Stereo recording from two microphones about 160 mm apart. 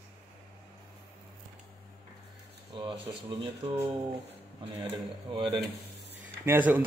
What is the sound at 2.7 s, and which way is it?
Speech, 30° right (ahead or behind).